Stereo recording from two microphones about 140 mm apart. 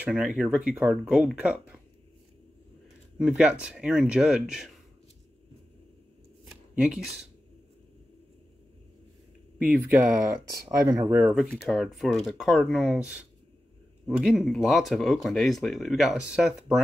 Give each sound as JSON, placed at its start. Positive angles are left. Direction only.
{"t": 0.0, "sound": "speech", "side_deg": -10}
{"t": 3.2, "sound": "speech", "side_deg": -5}
{"t": 6.8, "sound": "speech", "side_deg": -5}
{"t": 9.6, "sound": "speech", "side_deg": -15}
{"t": 10.8, "sound": "speech", "side_deg": -25}
{"t": 11.3, "sound": "speech", "side_deg": 0}